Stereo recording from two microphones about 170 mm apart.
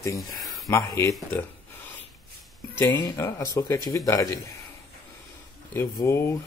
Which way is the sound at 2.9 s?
25° left (ahead or behind).